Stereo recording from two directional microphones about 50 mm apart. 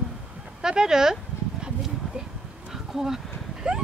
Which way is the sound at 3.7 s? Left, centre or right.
Right.